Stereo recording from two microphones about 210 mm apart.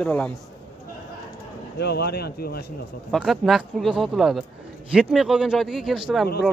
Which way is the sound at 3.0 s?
Centre (ahead or behind).